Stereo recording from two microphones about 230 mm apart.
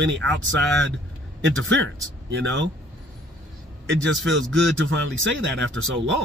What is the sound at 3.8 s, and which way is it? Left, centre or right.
Speech, right.